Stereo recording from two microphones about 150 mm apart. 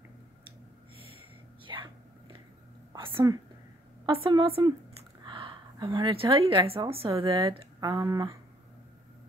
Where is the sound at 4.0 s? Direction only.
35° right (ahead or behind).